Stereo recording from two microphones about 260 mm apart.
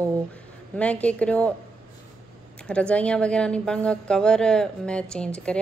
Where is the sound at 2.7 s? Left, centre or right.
Centre.